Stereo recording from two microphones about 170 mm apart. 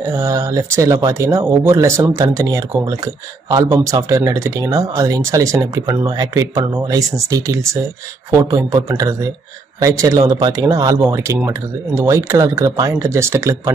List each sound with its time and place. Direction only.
0.0 s speech: 15° right (ahead or behind)